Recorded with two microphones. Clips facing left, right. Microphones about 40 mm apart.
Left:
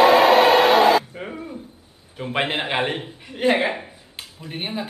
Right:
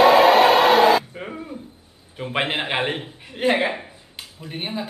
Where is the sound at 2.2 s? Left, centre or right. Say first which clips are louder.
Even; centre.